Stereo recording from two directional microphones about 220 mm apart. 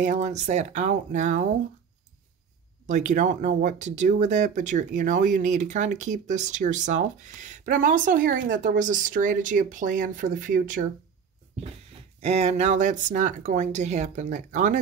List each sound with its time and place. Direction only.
0.0 s speech: 35° right (ahead or behind)
2.9 s speech: 35° right (ahead or behind)
12.2 s speech: 30° right (ahead or behind)